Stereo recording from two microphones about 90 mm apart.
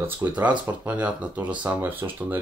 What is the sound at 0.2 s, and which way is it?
Speech, 20° right (ahead or behind).